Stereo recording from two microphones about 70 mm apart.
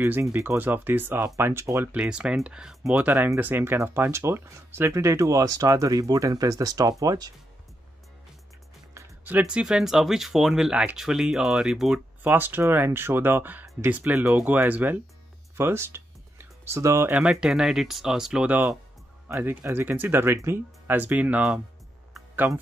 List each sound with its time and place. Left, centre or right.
0.3 s speech: right
0.6 s speech: right
1.4 s speech: right
1.9 s speech: centre
2.9 s speech: right
9.4 s speech: centre
12.4 s speech: right
15.5 s music: right
17.1 s speech: centre
19.3 s speech: right
19.7 s speech: right